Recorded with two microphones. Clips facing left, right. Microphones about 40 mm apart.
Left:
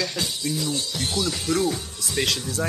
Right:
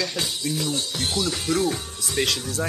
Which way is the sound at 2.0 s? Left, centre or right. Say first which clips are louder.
Even; centre.